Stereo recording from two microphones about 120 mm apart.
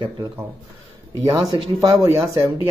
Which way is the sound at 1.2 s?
35° right (ahead or behind).